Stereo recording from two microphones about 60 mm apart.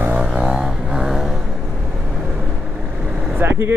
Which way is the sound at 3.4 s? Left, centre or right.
Right.